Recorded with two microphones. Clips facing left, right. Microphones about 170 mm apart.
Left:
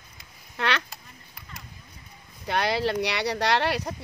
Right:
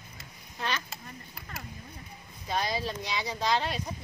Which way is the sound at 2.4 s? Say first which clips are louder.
Left 6 dB; 70° left (ahead or behind).